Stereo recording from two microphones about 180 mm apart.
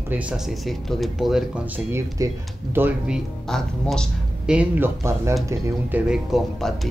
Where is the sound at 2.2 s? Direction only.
20° right (ahead or behind).